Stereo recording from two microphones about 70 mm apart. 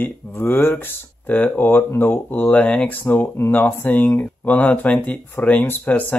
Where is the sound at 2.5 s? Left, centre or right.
Centre.